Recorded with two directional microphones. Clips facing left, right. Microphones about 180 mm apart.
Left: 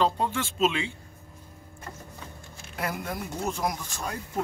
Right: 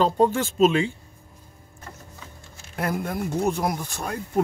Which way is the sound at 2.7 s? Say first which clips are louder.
Right 5 dB; 50° right (ahead or behind).